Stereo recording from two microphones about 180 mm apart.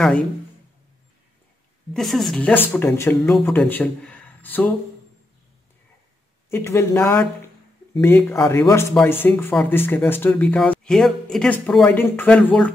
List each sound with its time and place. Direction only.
2.0 s speech: centre (ahead or behind)
3.3 s speech: centre (ahead or behind)
6.5 s speech: 15° left (ahead or behind)